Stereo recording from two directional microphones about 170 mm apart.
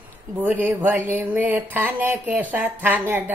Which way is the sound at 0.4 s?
10° right (ahead or behind).